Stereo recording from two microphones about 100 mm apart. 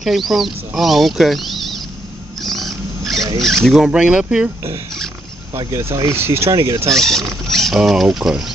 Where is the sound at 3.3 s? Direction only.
5° left (ahead or behind).